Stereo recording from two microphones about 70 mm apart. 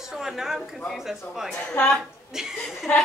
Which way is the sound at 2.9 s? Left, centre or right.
Centre.